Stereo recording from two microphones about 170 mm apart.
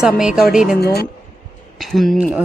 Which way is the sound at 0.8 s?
70° left (ahead or behind).